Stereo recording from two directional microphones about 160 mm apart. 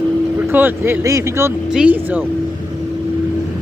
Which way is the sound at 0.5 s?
10° right (ahead or behind).